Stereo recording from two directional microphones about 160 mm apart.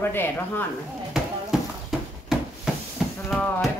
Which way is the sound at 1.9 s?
Centre (ahead or behind).